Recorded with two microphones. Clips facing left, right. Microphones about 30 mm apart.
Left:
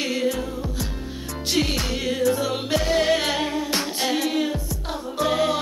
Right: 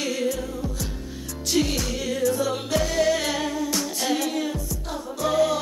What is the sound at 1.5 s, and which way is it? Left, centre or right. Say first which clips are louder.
Music: even; left.